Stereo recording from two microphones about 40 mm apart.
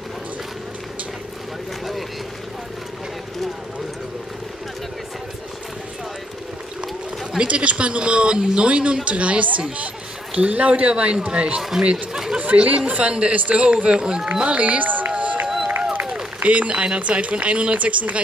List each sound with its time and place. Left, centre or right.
7.3 s speech: right
8.6 s speech: right
13.8 s speech: right
14.3 s run: right
15.4 s run: centre
16.3 s speech: right